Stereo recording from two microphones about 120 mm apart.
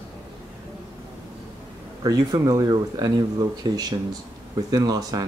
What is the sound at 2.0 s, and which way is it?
Speech, 30° right (ahead or behind).